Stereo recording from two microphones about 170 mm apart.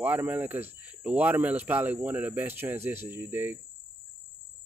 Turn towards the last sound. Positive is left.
turn(degrees=-10)  # may be behind; listen again after turning